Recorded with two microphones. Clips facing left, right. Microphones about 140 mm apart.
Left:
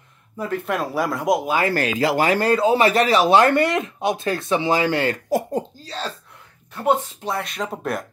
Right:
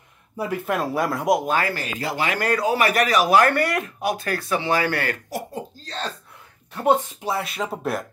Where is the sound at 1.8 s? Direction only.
90° left.